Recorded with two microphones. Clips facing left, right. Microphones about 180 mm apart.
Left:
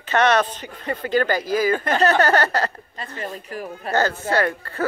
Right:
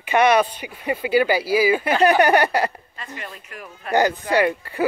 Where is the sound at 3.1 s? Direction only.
35° left (ahead or behind).